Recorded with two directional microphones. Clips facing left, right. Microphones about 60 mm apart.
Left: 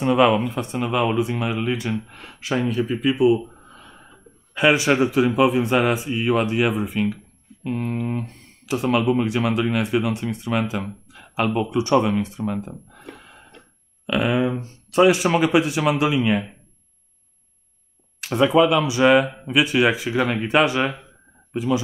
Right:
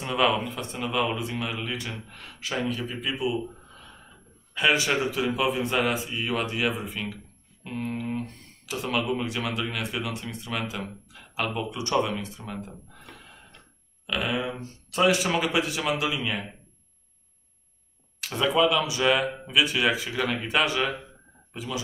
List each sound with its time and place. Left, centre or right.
0.0 s speech: left
4.6 s speech: left
12.2 s a sound: left
14.0 s speech: left
18.2 s speech: left